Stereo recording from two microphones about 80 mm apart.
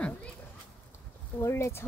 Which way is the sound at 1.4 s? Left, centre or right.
Left.